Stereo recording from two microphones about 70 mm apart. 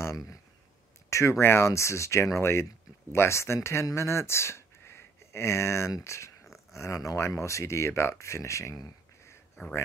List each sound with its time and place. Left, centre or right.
0.0 s speech: left
1.4 s speech: left
6.0 s a sound: left
6.7 s speech: left